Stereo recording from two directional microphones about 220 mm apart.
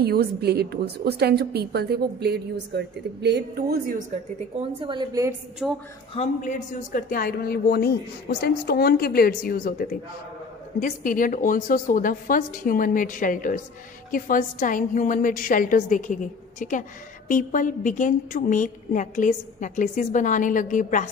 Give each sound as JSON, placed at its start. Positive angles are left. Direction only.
{"t": 0.0, "sound": "a woman's voice", "side_deg": -45}
{"t": 4.7, "sound": "a woman's voice", "side_deg": -20}
{"t": 5.6, "sound": "a woman's voice", "side_deg": -5}
{"t": 6.1, "sound": "a woman's voice", "side_deg": 35}